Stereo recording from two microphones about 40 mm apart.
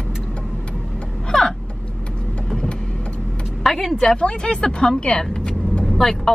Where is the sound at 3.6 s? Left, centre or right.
Centre.